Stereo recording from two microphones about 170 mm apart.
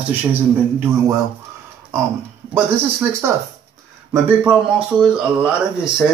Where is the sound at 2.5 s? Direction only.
15° right (ahead or behind).